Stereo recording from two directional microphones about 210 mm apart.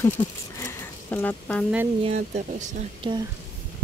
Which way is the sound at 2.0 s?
30° right (ahead or behind).